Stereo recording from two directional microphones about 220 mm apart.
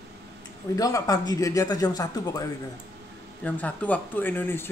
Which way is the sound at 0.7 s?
15° left (ahead or behind).